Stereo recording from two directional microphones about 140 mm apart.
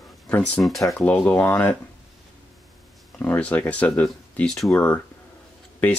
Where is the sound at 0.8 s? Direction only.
15° left (ahead or behind).